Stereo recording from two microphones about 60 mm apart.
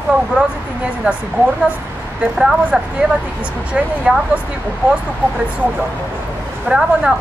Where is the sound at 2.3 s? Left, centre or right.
Centre.